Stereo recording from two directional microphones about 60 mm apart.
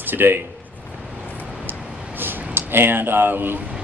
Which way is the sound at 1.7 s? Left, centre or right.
Right.